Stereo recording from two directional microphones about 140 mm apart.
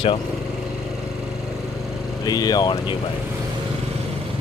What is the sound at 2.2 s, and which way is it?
Speech, 25° left (ahead or behind).